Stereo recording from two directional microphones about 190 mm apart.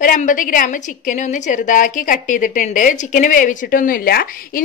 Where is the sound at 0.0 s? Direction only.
45° left (ahead or behind).